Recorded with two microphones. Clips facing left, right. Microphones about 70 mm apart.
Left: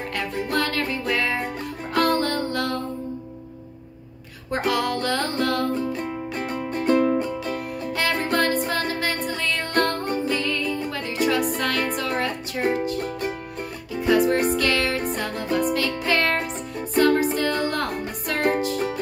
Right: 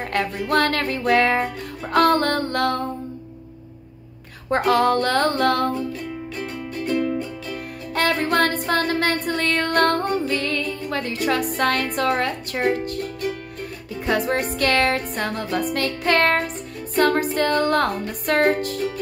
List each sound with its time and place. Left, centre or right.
0.1 s music: right
4.5 s music: right
5.9 s music: left
7.9 s music: right
13.0 s music: left
14.0 s music: right